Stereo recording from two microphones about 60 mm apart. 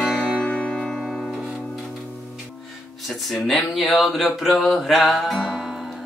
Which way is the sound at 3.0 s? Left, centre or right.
Centre.